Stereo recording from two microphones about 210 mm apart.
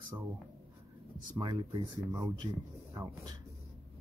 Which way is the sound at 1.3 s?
20° right (ahead or behind).